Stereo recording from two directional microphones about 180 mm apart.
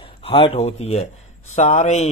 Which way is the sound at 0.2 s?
30° left (ahead or behind).